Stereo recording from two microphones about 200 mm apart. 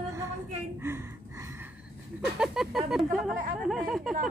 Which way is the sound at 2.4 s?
Centre (ahead or behind).